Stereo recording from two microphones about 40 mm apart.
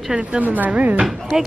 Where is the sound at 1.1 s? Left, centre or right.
Centre.